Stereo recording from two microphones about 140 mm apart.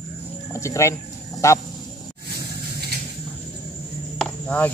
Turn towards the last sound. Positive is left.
turn(degrees=10)  # may be behind; listen again after turning